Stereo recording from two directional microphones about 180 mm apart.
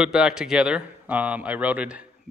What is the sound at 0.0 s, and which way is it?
A man's voice, 5° right (ahead or behind).